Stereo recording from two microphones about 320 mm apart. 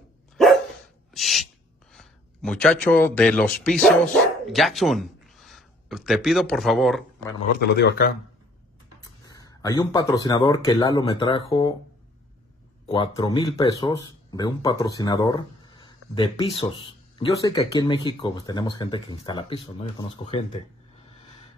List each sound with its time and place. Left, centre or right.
1.1 s speech: centre
7.6 s speech: left
9.0 s speech: centre
12.8 s speech: centre